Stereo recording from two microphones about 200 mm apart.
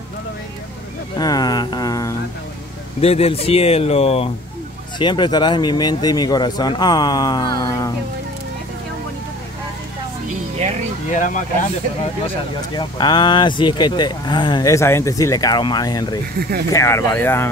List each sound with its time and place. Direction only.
1.1 s a sound: 20° left (ahead or behind)
3.0 s speech: 30° left (ahead or behind)
11.1 s speech: 40° left (ahead or behind)
12.7 s speech: 20° left (ahead or behind)
16.3 s speech: 50° right (ahead or behind)
16.7 s speech: 15° left (ahead or behind)